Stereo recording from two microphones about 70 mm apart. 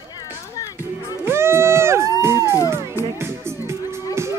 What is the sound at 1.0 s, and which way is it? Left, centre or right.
Music, right.